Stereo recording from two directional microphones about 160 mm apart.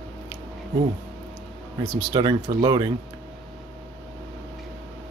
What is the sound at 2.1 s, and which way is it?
Speech, 30° right (ahead or behind).